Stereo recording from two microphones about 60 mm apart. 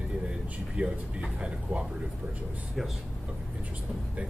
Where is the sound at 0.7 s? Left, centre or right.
Centre.